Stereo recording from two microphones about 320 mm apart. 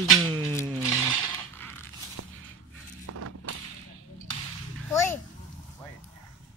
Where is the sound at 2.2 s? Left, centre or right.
Right.